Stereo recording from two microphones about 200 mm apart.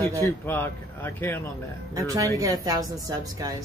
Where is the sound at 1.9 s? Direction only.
15° right (ahead or behind).